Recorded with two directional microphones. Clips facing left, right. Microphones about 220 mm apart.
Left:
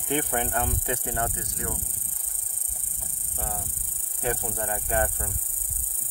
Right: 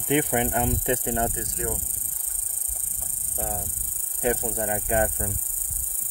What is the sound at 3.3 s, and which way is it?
Cricket, 15° right (ahead or behind).